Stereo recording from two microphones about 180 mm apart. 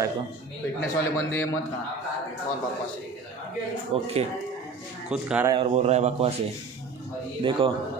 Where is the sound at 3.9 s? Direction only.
35° right (ahead or behind).